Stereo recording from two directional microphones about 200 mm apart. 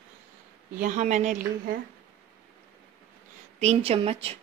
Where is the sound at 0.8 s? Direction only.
35° right (ahead or behind).